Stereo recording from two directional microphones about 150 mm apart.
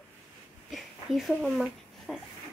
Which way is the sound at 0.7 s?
Centre (ahead or behind).